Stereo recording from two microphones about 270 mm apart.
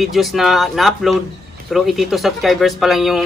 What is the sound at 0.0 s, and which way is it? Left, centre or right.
A man's voice, centre.